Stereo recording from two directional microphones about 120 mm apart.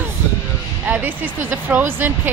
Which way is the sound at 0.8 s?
15° right (ahead or behind).